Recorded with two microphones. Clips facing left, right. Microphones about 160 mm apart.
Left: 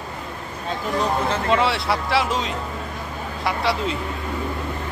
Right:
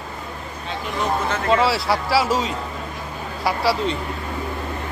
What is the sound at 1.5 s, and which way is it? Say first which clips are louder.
Speech: right 3 dB; centre (ahead or behind).